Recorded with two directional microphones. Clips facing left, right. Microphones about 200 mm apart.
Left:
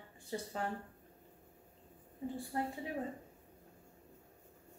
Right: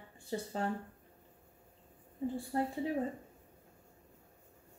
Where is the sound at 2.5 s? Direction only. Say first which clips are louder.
Right 4 dB; 30° right (ahead or behind).